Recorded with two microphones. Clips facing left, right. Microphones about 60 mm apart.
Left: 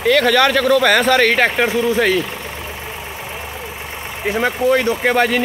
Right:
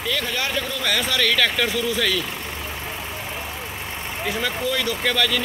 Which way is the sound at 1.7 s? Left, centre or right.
Left.